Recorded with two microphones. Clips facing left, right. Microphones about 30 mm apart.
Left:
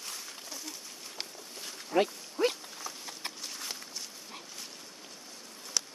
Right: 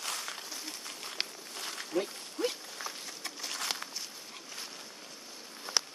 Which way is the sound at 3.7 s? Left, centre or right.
Right.